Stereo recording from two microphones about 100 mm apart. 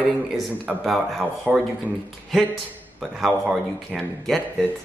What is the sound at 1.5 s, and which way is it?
Speech, 15° right (ahead or behind).